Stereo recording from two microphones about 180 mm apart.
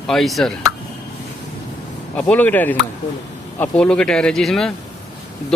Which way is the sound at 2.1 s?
5° left (ahead or behind).